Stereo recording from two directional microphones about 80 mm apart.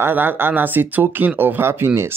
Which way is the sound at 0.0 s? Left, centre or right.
Right.